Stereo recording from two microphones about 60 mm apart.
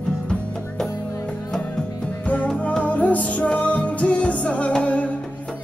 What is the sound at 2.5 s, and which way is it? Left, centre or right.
Music, centre.